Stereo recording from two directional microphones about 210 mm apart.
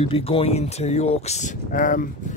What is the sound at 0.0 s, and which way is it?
Speech, 25° left (ahead or behind).